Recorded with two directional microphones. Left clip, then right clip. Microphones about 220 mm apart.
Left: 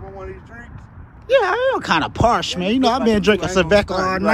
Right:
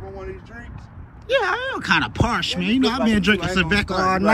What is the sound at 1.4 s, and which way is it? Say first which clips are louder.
Speech: left 5 dB; 10° left (ahead or behind).